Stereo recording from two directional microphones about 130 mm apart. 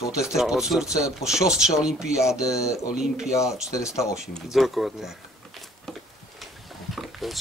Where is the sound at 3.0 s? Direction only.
5° right (ahead or behind).